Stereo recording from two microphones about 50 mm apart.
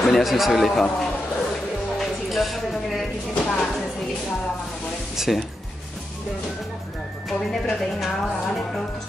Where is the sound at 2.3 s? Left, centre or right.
Centre.